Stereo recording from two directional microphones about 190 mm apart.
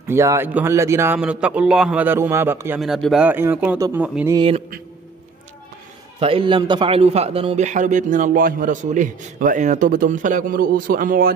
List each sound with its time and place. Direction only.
0.1 s a man's voice: 15° right (ahead or behind)
2.8 s a man's voice: centre (ahead or behind)
4.4 s speech: 30° right (ahead or behind)
6.1 s a man's voice: 30° right (ahead or behind); by 11.3 s 50° right (ahead or behind)